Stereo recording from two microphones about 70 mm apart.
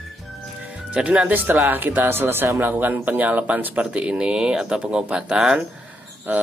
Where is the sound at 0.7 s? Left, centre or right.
Centre.